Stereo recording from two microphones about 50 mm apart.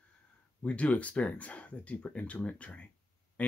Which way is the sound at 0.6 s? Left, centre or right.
Left.